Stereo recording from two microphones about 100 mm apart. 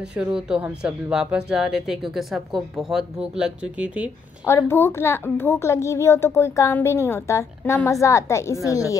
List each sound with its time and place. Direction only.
0.1 s speech: 10° right (ahead or behind)
4.5 s a child's voice: 25° left (ahead or behind)